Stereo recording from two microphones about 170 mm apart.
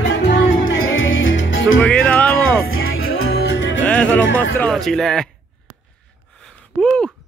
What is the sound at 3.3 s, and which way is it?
Music, 90° left.